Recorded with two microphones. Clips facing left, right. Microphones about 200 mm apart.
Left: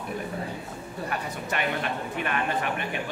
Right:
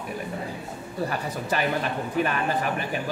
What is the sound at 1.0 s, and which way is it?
A man's voice, 35° right (ahead or behind).